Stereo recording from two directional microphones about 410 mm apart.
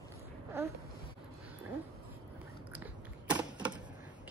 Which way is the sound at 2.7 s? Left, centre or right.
Centre.